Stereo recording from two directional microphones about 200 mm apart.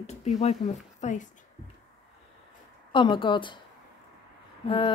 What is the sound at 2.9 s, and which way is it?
Speech, 25° left (ahead or behind).